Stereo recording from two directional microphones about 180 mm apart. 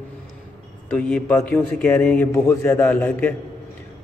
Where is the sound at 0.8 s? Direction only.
5° left (ahead or behind).